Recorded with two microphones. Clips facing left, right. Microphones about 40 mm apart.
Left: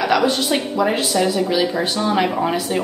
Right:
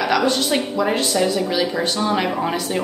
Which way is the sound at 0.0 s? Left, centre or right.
Centre.